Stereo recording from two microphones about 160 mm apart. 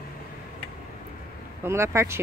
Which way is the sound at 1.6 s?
15° right (ahead or behind).